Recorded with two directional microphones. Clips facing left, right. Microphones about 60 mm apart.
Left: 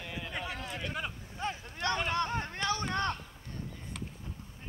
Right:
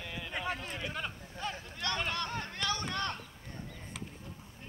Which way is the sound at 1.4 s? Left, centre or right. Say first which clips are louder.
Left 3 dB; left.